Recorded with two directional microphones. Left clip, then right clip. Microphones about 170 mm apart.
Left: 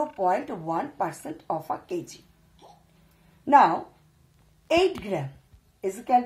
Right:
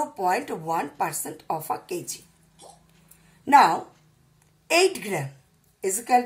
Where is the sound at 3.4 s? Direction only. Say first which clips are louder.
Right 1 dB; 25° left (ahead or behind).